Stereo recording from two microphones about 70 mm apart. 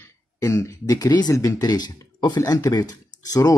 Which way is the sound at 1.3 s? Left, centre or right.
Left.